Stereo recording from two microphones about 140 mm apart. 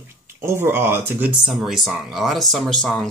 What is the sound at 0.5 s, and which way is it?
Speech, 15° right (ahead or behind).